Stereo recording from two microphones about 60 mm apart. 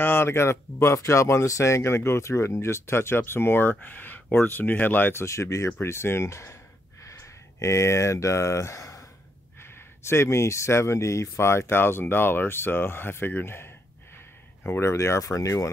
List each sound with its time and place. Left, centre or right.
0.0 s speech: left
5.2 s speech: left
5.8 s speech: left
9.6 s speech: left